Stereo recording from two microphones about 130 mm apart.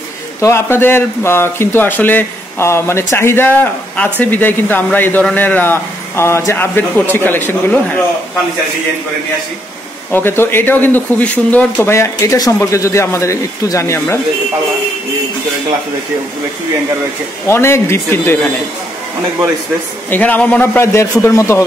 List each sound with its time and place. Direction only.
0.4 s a man's voice: 20° left (ahead or behind)
10.1 s speech: 15° left (ahead or behind)
17.5 s speech: 20° left (ahead or behind)
20.1 s speech: 10° left (ahead or behind)